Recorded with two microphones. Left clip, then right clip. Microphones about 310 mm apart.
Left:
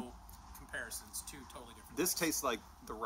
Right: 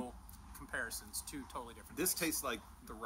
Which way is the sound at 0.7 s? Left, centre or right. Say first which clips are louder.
Right 2 dB; centre.